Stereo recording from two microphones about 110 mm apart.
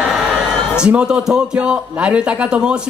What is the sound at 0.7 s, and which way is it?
A man's voice, 10° right (ahead or behind).